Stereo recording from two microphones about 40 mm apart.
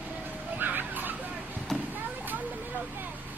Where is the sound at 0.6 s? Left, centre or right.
Right.